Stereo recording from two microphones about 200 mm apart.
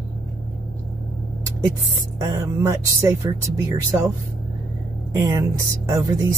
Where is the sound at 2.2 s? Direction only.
15° right (ahead or behind).